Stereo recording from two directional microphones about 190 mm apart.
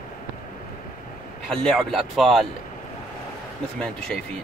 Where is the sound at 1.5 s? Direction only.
Centre (ahead or behind).